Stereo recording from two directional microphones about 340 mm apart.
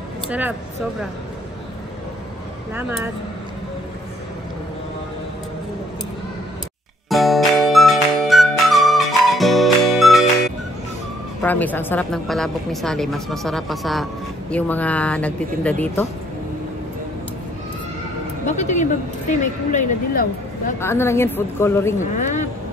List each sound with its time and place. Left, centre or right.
0.3 s a woman's voice: centre
2.7 s a woman's voice: centre
7.1 s music: centre
11.4 s a woman's voice: centre
18.6 s speech: left
20.8 s a woman's voice: centre
22.0 s speech: left